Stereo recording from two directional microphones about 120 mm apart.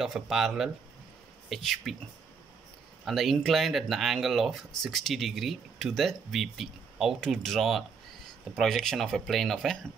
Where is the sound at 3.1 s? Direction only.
Centre (ahead or behind).